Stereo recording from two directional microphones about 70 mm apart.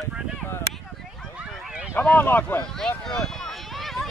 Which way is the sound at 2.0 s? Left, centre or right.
Left.